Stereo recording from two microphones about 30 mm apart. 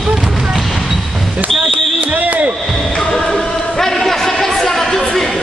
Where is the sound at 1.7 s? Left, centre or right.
Right.